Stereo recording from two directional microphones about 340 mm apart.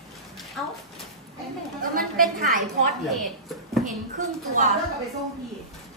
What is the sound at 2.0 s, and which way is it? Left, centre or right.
Speech, right.